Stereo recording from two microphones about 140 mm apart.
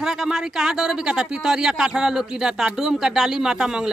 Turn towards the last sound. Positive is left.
turn(degrees=-5)  # may be behind; listen again after turning